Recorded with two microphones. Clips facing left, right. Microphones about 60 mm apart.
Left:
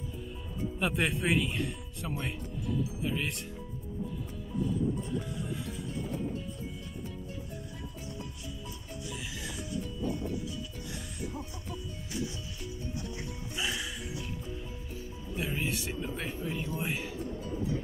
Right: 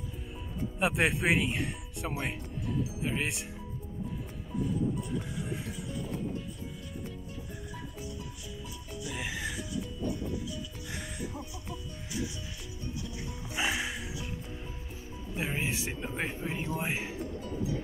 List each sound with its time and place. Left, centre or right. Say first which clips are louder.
0.7 s speech: right 3 dB; centre
3.0 s music: right 1 dB; centre
9.0 s music: right 5 dB; right
13.6 s music: right 4 dB; right
15.3 s speech: even; right